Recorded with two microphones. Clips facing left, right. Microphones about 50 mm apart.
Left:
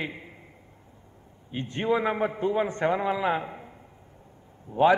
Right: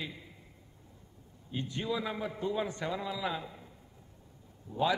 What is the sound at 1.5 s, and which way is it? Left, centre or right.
A man's voice, left.